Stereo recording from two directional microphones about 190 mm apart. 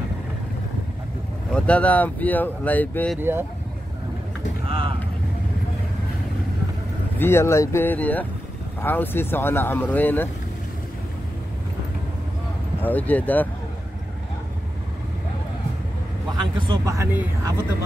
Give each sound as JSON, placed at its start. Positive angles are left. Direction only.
{"t": 1.5, "sound": "speech", "side_deg": 5}
{"t": 3.2, "sound": "speech", "side_deg": -10}
{"t": 4.6, "sound": "speech", "side_deg": -30}
{"t": 7.2, "sound": "speech", "side_deg": 15}
{"t": 12.8, "sound": "speech", "side_deg": 10}
{"t": 16.6, "sound": "speech", "side_deg": -20}